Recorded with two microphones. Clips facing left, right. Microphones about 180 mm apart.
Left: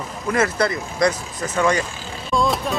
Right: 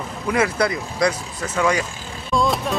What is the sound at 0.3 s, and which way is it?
Speech, 10° right (ahead or behind).